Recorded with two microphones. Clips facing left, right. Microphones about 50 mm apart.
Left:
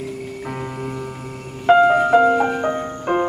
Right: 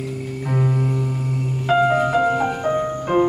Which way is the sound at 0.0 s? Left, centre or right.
Centre.